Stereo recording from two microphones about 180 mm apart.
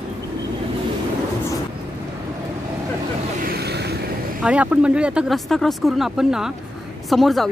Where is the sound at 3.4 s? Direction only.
60° right (ahead or behind).